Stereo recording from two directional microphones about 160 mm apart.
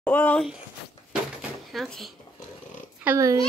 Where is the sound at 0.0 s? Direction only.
10° left (ahead or behind).